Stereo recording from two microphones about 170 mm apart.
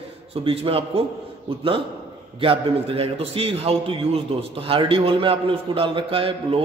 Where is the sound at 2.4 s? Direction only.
35° right (ahead or behind).